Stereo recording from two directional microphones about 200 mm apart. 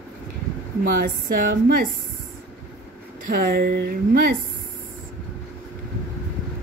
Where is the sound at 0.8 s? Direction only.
50° right (ahead or behind).